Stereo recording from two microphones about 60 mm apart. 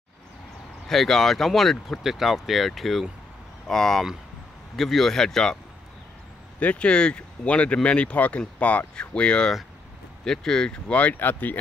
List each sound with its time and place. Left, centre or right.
0.8 s speech: centre
6.6 s speech: left